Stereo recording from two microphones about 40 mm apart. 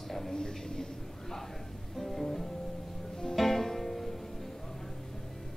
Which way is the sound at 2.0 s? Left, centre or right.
Centre.